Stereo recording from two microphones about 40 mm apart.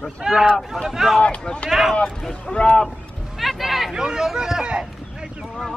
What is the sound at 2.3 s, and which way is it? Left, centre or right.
Speech, left.